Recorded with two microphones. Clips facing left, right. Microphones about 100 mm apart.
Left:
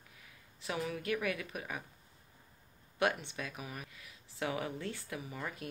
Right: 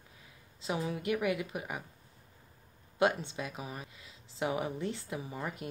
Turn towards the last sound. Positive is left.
turn(degrees=-20)  # may be behind; listen again after turning